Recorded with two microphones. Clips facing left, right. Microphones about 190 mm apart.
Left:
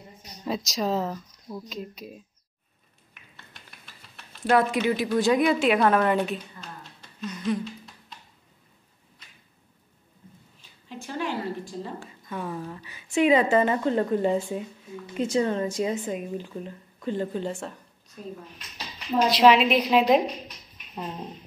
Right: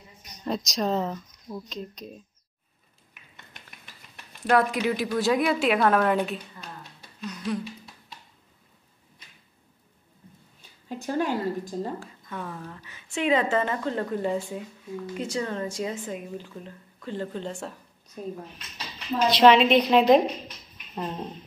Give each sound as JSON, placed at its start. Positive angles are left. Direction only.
{"t": 0.5, "sound": "a woman's voice", "side_deg": 0}
{"t": 3.5, "sound": "a sound", "side_deg": -15}
{"t": 4.5, "sound": "a woman's voice", "side_deg": 0}
{"t": 7.0, "sound": "a sound", "side_deg": 0}
{"t": 10.9, "sound": "a woman's voice", "side_deg": -45}
{"t": 12.3, "sound": "a woman's voice", "side_deg": 15}
{"t": 18.8, "sound": "a woman's voice", "side_deg": 0}